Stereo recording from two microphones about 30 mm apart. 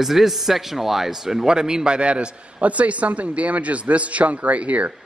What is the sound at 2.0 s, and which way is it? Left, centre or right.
A man's voice, right.